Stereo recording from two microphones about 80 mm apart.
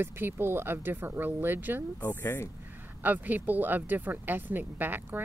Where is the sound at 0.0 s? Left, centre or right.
Right.